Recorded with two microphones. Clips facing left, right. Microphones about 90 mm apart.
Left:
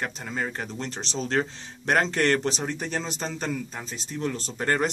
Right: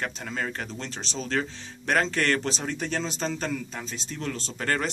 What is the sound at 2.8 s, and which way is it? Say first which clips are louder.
Speech: right 1 dB; 10° left (ahead or behind).